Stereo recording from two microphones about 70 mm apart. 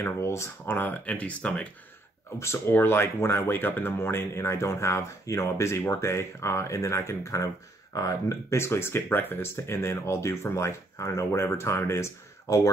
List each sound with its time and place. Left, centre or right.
0.0 s speech: left
0.7 s speech: left
2.3 s speech: left